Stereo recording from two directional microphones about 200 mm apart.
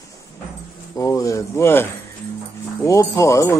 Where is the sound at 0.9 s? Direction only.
15° left (ahead or behind).